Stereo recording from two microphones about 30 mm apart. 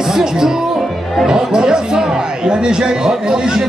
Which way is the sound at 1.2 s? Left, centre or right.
Right.